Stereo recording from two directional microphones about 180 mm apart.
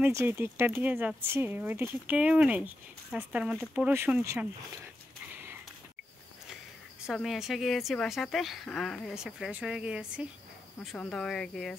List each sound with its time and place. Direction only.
0.0 s speech: 15° right (ahead or behind)
5.3 s a sound: 10° right (ahead or behind)
7.1 s speech: centre (ahead or behind)